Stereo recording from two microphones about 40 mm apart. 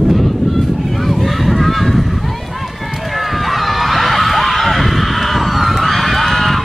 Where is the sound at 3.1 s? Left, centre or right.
Centre.